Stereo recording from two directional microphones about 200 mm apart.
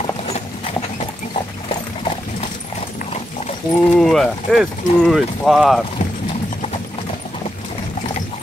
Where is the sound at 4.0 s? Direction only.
Centre (ahead or behind).